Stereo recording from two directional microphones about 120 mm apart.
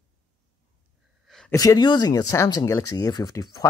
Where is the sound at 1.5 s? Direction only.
30° left (ahead or behind).